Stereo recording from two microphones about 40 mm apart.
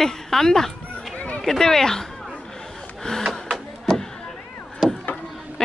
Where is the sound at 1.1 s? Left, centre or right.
Left.